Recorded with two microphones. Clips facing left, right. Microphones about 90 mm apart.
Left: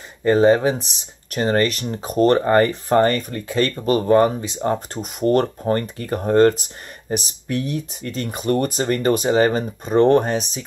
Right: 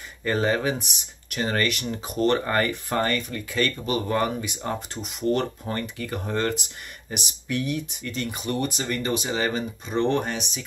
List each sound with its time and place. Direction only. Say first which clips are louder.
0.2 s speech: left 9 dB; 25° left (ahead or behind)